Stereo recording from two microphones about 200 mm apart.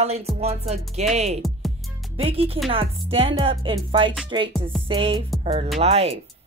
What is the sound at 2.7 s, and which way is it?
Music, 30° right (ahead or behind).